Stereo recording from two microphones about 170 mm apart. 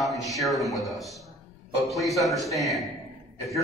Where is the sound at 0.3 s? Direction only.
Centre (ahead or behind).